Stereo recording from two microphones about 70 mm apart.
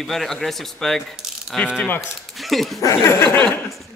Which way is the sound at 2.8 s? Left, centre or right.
Left.